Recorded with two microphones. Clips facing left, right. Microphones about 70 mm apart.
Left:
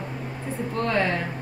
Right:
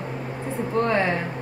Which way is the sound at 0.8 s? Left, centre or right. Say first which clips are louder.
Even; right.